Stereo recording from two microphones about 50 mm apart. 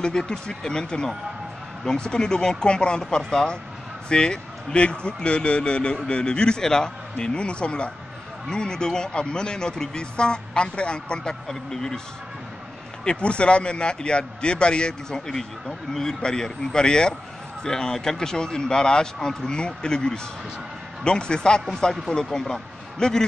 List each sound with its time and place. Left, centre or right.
0.0 s speech: centre
13.0 s speech: centre